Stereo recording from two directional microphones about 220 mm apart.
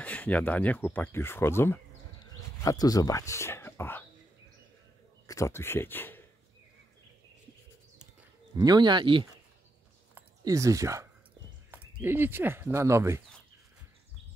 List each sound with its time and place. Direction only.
0.0 s speech: 5° left (ahead or behind)
5.2 s speech: 15° left (ahead or behind)
8.5 s speech: 20° right (ahead or behind)
10.1 s a sound: 15° right (ahead or behind)
11.7 s speech: 10° right (ahead or behind)